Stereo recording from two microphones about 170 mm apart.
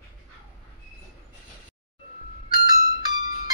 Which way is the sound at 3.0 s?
25° right (ahead or behind).